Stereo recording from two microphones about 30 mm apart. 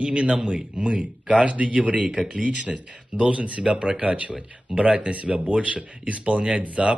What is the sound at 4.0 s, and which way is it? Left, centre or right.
Speech, right.